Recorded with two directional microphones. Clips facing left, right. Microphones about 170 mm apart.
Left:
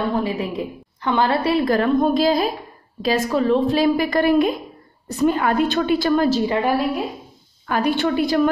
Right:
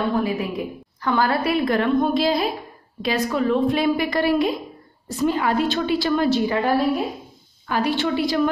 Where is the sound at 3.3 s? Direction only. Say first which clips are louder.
Left 2 dB; 30° left (ahead or behind).